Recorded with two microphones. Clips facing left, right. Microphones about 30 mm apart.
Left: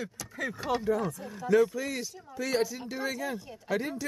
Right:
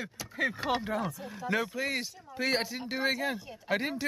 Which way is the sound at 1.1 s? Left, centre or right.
Centre.